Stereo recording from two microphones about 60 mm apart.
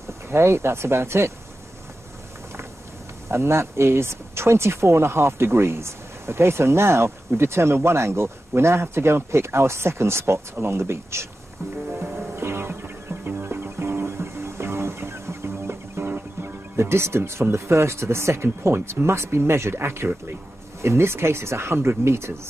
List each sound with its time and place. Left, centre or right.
0.3 s speech: right
3.3 s speech: right
12.4 s music: right
16.1 s speech: right